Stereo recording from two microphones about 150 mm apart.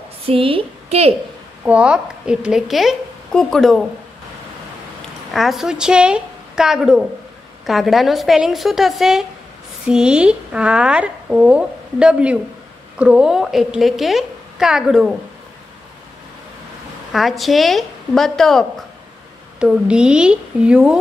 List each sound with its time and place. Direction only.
0.3 s a woman's voice: 35° right (ahead or behind)
1.6 s a woman's voice: 10° right (ahead or behind)
5.3 s a woman's voice: centre (ahead or behind)
17.1 s a woman's voice: centre (ahead or behind)